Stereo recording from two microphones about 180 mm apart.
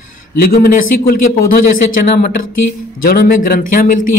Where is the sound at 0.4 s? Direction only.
55° left (ahead or behind).